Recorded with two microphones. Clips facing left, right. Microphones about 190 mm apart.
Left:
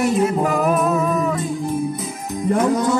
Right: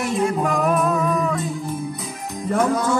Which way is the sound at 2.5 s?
15° left (ahead or behind).